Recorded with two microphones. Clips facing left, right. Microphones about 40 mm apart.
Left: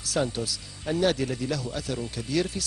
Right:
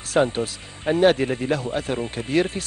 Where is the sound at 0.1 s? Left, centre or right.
Right.